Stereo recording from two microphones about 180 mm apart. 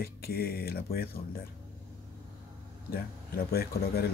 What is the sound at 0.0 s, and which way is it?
Speech, 60° left (ahead or behind).